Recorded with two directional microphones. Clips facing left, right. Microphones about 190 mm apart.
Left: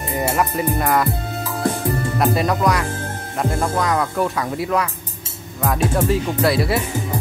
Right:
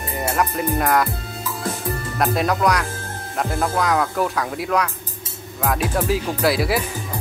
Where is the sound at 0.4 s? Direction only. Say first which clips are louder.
Right 2 dB; centre (ahead or behind).